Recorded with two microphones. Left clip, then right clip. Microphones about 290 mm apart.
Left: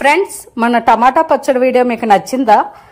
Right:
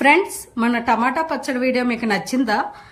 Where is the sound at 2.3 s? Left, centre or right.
Left.